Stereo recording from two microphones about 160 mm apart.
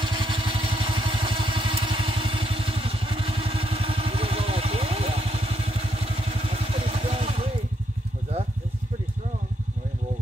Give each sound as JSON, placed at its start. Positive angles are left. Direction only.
{"t": 0.0, "sound": "vehicle", "side_deg": -30}